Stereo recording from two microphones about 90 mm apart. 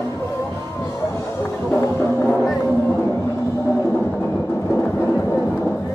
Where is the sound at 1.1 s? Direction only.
30° left (ahead or behind).